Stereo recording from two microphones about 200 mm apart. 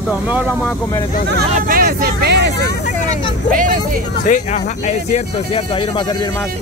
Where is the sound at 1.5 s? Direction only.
45° right (ahead or behind).